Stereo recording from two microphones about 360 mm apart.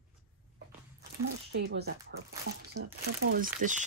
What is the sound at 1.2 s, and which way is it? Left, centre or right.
Speech, right.